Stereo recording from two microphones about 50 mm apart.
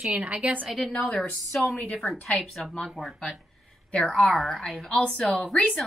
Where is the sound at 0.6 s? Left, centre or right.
Centre.